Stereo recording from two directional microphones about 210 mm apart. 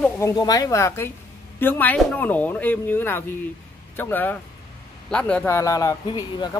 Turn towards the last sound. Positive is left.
turn(degrees=20)  # may be behind; listen again after turning